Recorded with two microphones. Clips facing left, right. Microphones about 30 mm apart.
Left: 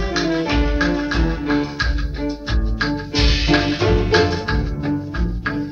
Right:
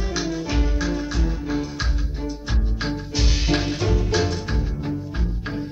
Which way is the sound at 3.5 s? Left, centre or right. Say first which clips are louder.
Left 6 dB; left.